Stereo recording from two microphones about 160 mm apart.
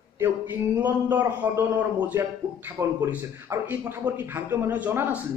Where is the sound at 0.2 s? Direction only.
10° right (ahead or behind).